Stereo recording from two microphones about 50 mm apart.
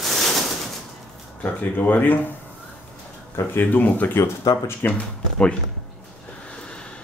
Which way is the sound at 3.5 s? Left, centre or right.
Left.